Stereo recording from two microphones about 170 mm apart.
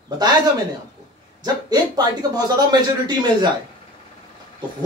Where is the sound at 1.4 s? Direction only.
25° right (ahead or behind).